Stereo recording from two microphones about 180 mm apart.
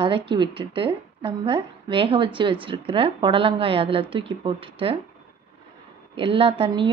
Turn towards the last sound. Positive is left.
turn(degrees=-30)  # may be behind; listen again after turning